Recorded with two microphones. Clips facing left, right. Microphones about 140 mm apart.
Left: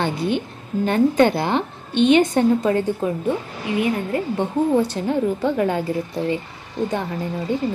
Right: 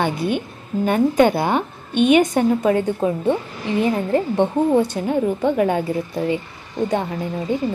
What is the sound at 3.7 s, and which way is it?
Speech, 30° right (ahead or behind).